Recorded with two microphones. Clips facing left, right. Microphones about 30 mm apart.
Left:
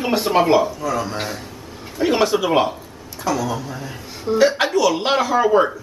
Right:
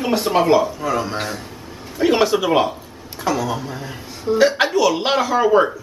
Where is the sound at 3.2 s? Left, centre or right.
Centre.